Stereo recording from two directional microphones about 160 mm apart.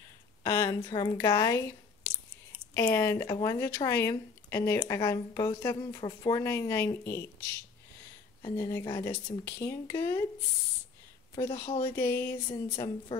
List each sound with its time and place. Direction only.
0.4 s a sound: 20° left (ahead or behind)
0.7 s a woman's voice: 25° left (ahead or behind)
2.7 s speech: 15° left (ahead or behind)
8.4 s speech: 20° left (ahead or behind)
11.3 s speech: 20° left (ahead or behind)
12.4 s a woman's voice: 30° left (ahead or behind)